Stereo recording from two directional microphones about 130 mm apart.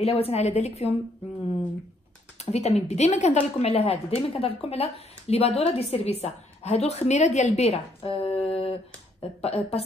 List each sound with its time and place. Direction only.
0.0 s a woman's voice: 50° left (ahead or behind)
2.5 s a woman's voice: 55° left (ahead or behind)